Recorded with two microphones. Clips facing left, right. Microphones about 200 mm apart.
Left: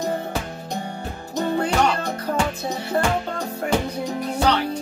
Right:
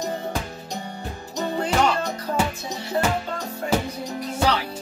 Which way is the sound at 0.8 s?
55° left (ahead or behind).